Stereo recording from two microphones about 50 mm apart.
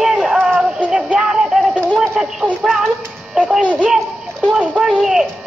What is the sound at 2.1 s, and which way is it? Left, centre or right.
Speech, centre.